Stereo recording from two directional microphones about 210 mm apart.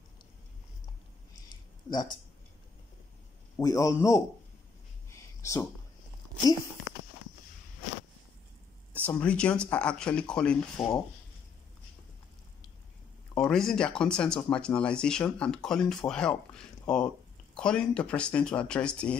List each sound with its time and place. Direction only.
1.9 s speech: 20° left (ahead or behind)
3.5 s a man's voice: 15° left (ahead or behind)
5.4 s speech: 15° left (ahead or behind)
9.0 s speech: 5° left (ahead or behind)
13.4 s speech: centre (ahead or behind)